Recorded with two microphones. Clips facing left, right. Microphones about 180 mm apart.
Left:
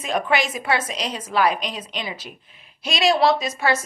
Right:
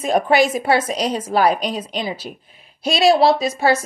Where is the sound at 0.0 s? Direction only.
35° right (ahead or behind).